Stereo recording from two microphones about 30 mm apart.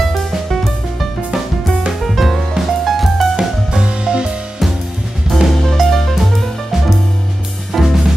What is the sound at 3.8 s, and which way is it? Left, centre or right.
Music, right.